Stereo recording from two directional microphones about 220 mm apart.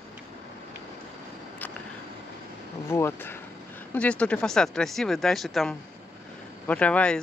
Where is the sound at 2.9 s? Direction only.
10° left (ahead or behind).